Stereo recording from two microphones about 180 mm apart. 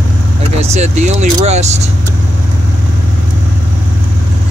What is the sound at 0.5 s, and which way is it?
Speech, 40° right (ahead or behind).